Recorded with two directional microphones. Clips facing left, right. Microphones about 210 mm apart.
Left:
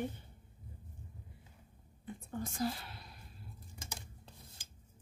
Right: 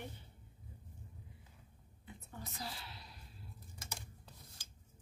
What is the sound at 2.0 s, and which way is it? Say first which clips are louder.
Whispering: left 10 dB; 50° left (ahead or behind).